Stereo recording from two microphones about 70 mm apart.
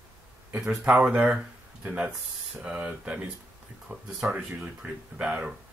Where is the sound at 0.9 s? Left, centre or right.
Centre.